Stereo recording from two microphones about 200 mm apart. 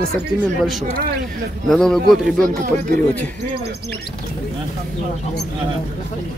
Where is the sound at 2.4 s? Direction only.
40° right (ahead or behind).